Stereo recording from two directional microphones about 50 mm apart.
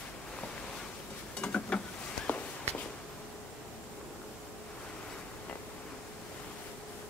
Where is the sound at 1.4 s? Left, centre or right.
Left.